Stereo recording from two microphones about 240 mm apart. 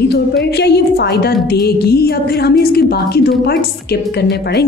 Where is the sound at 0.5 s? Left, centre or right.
Left.